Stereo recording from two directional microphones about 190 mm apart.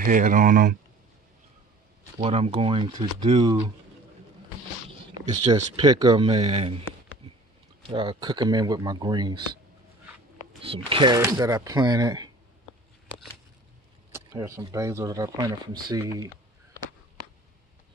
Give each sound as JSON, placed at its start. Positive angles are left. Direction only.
{"t": 0.0, "sound": "speech", "side_deg": -45}
{"t": 2.1, "sound": "speech", "side_deg": -30}
{"t": 5.1, "sound": "speech", "side_deg": -20}
{"t": 7.9, "sound": "speech", "side_deg": -25}
{"t": 10.6, "sound": "speech", "side_deg": -30}
{"t": 11.1, "sound": "speech", "side_deg": -15}
{"t": 14.1, "sound": "speech", "side_deg": -15}